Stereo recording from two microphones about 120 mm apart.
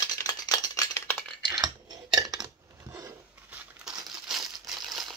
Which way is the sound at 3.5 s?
5° right (ahead or behind).